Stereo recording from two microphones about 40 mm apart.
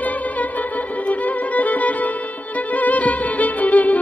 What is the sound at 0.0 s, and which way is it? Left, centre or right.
Music, left.